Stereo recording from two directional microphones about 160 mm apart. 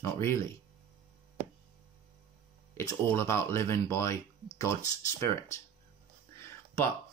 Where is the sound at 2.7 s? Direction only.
15° left (ahead or behind).